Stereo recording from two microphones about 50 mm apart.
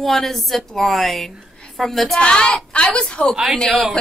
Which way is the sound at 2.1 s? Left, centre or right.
Centre.